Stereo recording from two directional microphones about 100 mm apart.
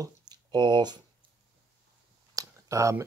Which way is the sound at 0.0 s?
40° right (ahead or behind).